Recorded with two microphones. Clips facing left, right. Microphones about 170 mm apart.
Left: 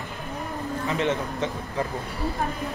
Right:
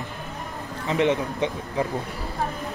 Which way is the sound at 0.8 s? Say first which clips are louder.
Right 5 dB; 20° right (ahead or behind).